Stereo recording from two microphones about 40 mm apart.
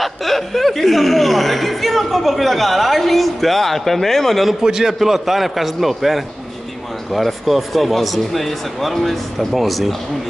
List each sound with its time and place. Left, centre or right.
0.0 s speech: centre
4.6 s a man's voice: centre